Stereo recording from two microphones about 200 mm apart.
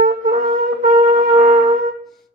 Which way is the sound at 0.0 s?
40° right (ahead or behind).